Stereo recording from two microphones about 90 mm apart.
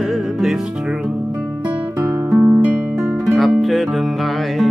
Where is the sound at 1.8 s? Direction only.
20° right (ahead or behind).